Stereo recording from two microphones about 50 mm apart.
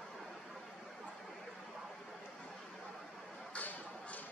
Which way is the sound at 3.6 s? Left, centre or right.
Left.